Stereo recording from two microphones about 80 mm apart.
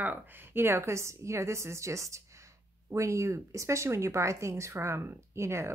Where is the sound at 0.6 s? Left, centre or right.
Right.